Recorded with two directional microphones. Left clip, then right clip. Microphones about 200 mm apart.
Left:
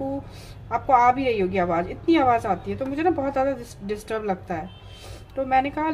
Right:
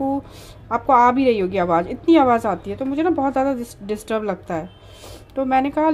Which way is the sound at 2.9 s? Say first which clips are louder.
Right 4 dB; 20° right (ahead or behind).